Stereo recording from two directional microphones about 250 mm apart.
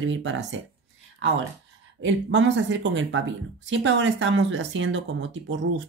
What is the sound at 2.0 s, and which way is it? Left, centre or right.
Speech, right.